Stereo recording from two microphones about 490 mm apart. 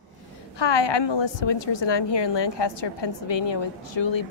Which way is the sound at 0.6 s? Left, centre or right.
Left.